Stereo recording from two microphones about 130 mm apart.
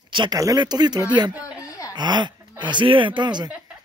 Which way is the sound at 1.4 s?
25° left (ahead or behind).